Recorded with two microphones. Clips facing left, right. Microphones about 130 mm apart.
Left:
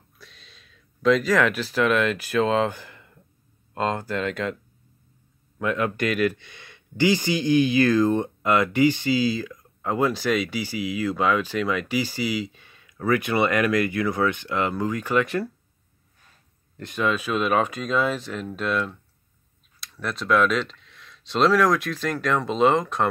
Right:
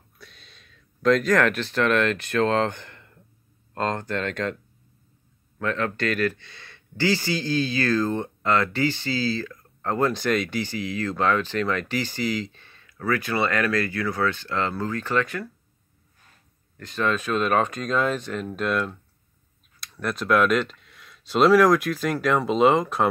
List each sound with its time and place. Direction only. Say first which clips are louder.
0.2 s speech: right 1 dB; centre (ahead or behind)
5.6 s speech: left 2 dB; 15° left (ahead or behind)
16.7 s speech: left 2 dB; 20° left (ahead or behind)
17.0 s speech: even; 5° left (ahead or behind)